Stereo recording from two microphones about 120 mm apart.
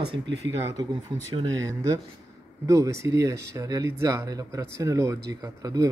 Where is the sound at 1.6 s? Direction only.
25° right (ahead or behind).